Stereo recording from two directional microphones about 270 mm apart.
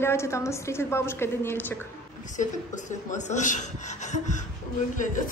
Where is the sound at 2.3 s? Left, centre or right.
Left.